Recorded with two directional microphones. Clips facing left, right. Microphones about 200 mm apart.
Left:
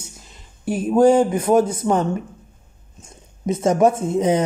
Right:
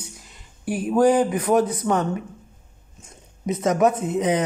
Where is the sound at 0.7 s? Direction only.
25° left (ahead or behind).